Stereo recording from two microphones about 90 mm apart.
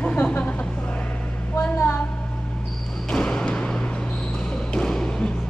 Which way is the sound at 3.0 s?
5° left (ahead or behind).